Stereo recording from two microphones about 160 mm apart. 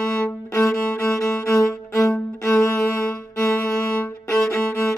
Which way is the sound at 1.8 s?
15° left (ahead or behind).